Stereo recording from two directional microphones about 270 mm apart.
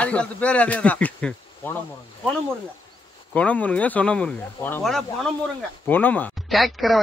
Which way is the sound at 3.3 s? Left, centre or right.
Centre.